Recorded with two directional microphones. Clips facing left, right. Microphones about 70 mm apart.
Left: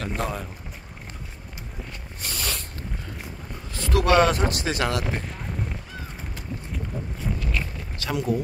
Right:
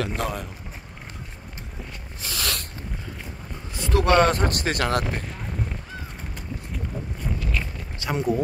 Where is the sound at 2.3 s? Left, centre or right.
Right.